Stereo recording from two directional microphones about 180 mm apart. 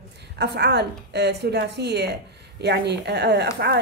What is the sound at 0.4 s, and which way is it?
A woman's voice, 70° right (ahead or behind).